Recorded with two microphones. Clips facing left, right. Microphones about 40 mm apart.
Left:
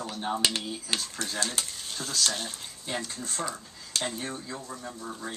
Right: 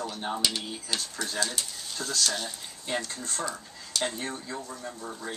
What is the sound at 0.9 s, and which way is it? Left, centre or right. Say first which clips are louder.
Speech: left 1 dB; left.